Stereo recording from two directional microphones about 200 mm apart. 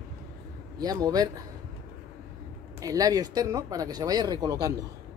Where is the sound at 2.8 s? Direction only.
20° right (ahead or behind).